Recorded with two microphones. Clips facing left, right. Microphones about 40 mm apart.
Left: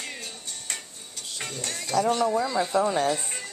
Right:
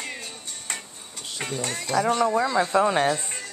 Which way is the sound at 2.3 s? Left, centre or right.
Right.